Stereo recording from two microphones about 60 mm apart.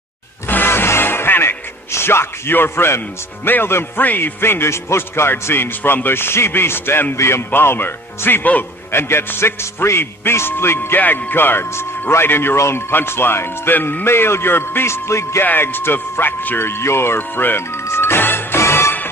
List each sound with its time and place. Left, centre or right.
0.5 s music: left
1.9 s speech: left
8.9 s speech: left
12.5 s speech: left
15.4 s speech: left
17.8 s music: left